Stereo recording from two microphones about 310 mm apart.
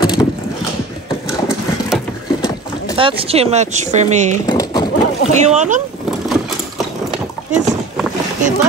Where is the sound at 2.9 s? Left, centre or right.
Centre.